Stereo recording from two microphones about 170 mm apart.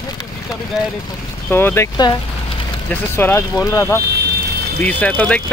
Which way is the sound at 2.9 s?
15° left (ahead or behind).